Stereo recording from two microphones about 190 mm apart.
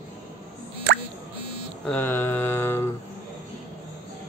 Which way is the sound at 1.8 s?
10° left (ahead or behind).